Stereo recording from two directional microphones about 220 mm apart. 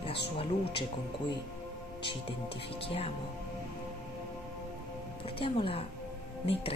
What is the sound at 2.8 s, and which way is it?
Speech, 25° left (ahead or behind).